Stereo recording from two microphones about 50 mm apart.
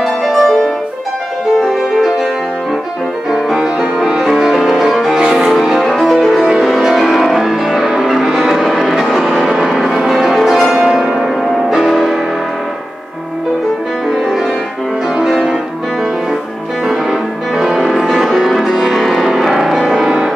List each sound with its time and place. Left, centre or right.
0.0 s music: centre
1.7 s music: centre
3.5 s music: centre
5.2 s music: centre
5.5 s music: centre
9.9 s change ringing: centre
10.7 s music: centre
16.8 s music: centre